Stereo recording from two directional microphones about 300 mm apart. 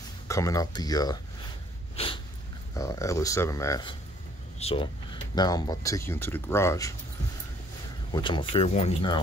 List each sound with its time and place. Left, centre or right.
0.3 s speech: centre
2.7 s speech: centre
8.1 s speech: centre